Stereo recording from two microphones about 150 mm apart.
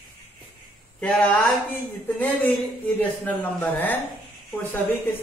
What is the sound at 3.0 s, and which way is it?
A man's voice, 10° left (ahead or behind).